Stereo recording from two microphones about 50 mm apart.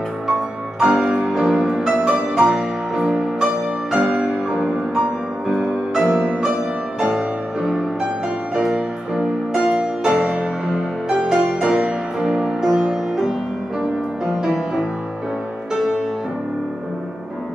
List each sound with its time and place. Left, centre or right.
0.3 s music: centre
5.5 s music: centre
6.1 s music: right